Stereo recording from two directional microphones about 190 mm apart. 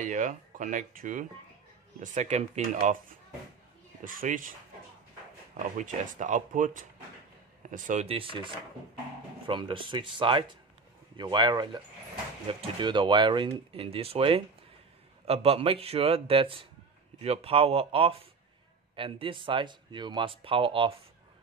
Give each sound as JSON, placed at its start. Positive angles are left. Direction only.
{"t": 0.0, "sound": "a man's voice", "side_deg": -40}
{"t": 4.0, "sound": "speech", "side_deg": -45}
{"t": 5.8, "sound": "a man's voice", "side_deg": -40}
{"t": 9.5, "sound": "a man's voice", "side_deg": -25}